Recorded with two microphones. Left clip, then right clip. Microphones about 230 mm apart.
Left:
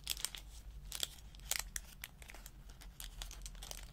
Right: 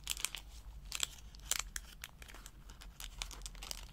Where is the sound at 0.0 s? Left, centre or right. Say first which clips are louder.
Right 2 dB; centre.